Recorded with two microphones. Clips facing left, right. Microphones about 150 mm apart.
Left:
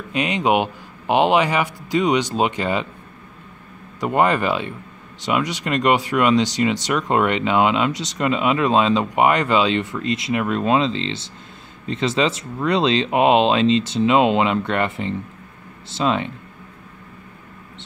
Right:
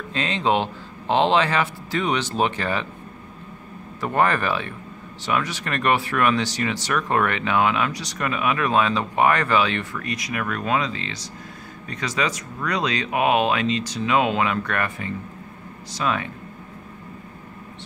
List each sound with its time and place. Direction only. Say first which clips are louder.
0.1 s speech: left 3 dB; 15° left (ahead or behind)
4.0 s speech: left 3 dB; 15° left (ahead or behind)